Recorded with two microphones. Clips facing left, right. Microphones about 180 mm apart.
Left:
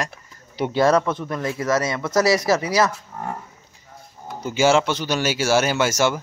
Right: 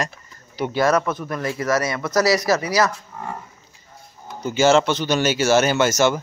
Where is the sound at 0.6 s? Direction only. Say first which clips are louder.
Left 1 dB; 30° left (ahead or behind).